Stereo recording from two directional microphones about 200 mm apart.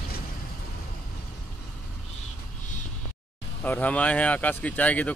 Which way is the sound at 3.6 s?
10° left (ahead or behind).